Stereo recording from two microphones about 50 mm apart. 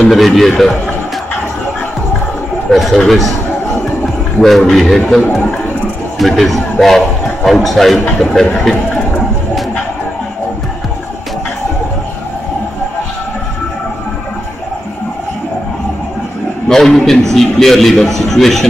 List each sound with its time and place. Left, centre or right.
0.0 s a man's voice: centre
2.7 s a man's voice: centre
8.3 s speech: centre
16.6 s a man's voice: centre